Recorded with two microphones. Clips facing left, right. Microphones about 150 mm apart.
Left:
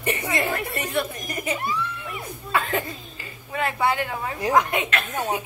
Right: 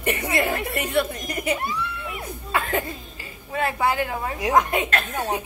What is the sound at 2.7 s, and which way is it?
Speech, 30° right (ahead or behind).